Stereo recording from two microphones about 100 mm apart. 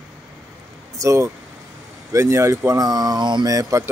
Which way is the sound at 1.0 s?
30° right (ahead or behind).